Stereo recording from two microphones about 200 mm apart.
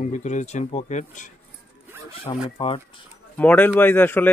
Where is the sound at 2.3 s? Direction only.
20° left (ahead or behind).